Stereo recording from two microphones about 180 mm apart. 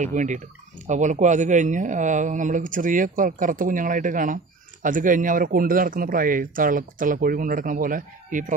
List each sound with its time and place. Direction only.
0.0 s speech: 45° right (ahead or behind)